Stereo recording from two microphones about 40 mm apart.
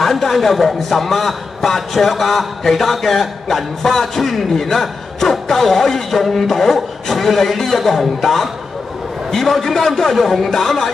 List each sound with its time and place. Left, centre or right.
0.0 s a man's voice: centre